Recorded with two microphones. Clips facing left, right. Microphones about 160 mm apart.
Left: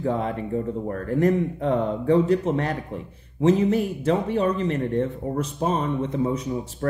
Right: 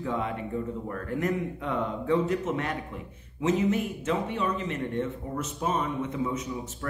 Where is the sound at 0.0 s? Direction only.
35° left (ahead or behind).